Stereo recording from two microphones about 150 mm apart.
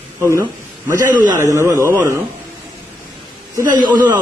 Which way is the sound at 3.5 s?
25° right (ahead or behind).